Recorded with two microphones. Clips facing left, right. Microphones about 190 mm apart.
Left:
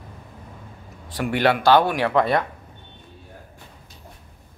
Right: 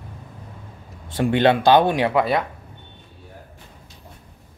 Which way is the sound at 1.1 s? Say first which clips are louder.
Right 3 dB; 25° right (ahead or behind).